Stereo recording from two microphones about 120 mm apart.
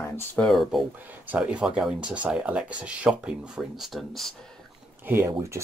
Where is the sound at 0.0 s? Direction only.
20° left (ahead or behind).